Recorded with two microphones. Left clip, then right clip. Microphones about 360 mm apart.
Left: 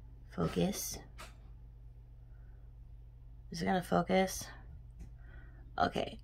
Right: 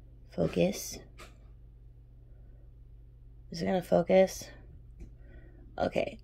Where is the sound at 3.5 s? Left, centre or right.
Centre.